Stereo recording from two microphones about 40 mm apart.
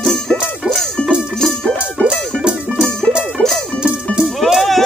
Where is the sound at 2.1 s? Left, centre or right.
Centre.